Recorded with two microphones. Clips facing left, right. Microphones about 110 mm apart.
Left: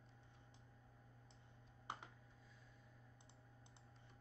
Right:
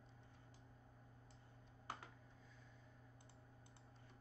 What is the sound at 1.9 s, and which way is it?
Computer keyboard, 20° left (ahead or behind).